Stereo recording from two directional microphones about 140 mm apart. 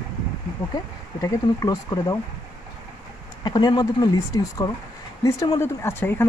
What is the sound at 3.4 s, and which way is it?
Speech, 30° left (ahead or behind).